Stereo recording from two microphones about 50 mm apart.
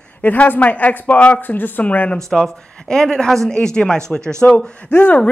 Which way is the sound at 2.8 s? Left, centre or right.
Centre.